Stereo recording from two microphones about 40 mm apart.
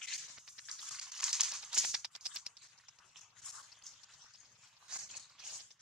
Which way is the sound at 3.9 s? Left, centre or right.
Centre.